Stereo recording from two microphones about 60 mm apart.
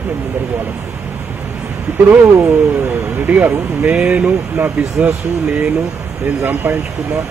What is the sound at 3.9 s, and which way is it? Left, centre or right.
Speech, centre.